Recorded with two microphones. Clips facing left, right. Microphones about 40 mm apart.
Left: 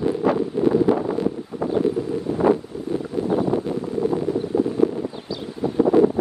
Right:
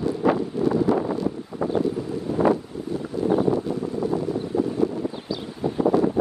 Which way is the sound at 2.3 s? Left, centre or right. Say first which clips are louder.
Right 3 dB; left.